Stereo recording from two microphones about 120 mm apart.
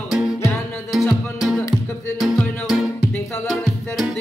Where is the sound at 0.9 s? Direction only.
Centre (ahead or behind).